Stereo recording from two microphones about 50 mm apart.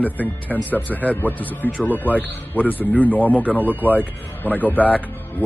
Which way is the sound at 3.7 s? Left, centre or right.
Right.